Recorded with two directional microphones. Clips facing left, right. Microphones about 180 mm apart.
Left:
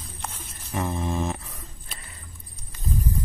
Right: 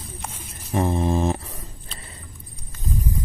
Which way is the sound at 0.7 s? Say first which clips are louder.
Right 6 dB; 30° right (ahead or behind).